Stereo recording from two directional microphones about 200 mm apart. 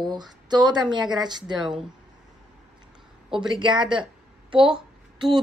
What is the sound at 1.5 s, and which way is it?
Speech, centre (ahead or behind).